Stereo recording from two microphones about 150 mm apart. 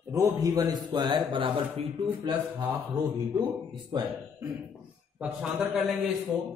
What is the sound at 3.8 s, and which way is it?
Speech, 25° right (ahead or behind).